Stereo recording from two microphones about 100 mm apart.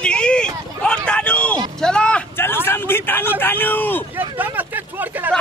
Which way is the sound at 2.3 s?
25° left (ahead or behind).